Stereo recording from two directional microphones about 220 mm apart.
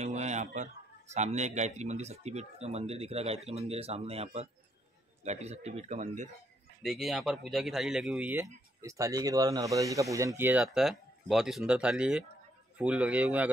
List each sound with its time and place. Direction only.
0.0 s a man's voice: 30° right (ahead or behind)
6.8 s speech: centre (ahead or behind)